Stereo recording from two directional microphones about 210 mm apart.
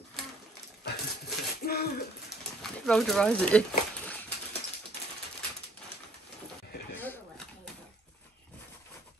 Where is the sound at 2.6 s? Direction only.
Centre (ahead or behind).